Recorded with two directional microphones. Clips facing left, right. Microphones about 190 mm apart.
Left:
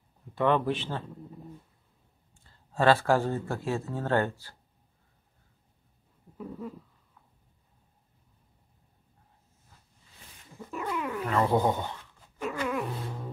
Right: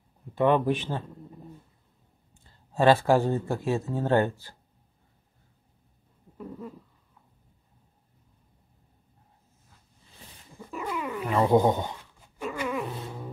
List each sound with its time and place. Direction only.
0.3 s speech: 15° right (ahead or behind)
2.7 s speech: 15° right (ahead or behind)
6.3 s a sound: centre (ahead or behind)
10.6 s cat: centre (ahead or behind)
11.2 s speech: 15° right (ahead or behind)
12.5 s dog: centre (ahead or behind)